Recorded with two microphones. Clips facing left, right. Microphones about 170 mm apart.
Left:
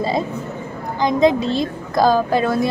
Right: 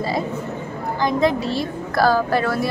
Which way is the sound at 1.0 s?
20° left (ahead or behind).